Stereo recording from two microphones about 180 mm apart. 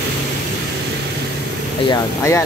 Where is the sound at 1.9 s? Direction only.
15° left (ahead or behind).